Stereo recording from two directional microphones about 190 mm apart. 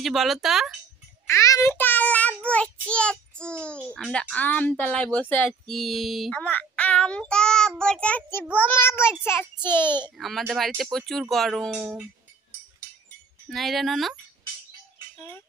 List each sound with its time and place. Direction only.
0.0 s speech: centre (ahead or behind)
1.2 s child singing: 15° left (ahead or behind)
3.9 s speech: 5° left (ahead or behind)
7.8 s child singing: 5° left (ahead or behind)
10.1 s speech: centre (ahead or behind)
13.5 s speech: centre (ahead or behind)
15.1 s speech: 10° left (ahead or behind)